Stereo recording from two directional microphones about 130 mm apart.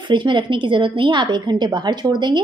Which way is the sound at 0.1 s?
40° right (ahead or behind).